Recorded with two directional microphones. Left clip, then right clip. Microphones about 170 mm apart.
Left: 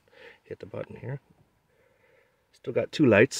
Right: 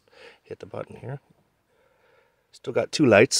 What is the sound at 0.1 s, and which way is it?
Speech, centre (ahead or behind).